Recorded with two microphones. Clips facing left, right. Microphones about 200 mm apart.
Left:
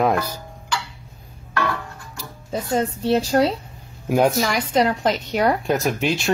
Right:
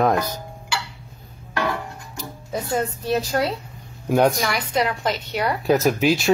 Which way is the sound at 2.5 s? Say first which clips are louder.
Left 2 dB; 30° left (ahead or behind).